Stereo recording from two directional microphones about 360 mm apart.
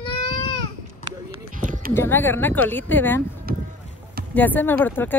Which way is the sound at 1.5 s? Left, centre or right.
Right.